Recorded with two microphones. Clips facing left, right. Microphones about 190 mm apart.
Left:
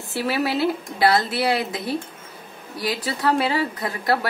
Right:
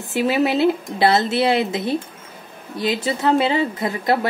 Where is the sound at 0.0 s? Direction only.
20° right (ahead or behind).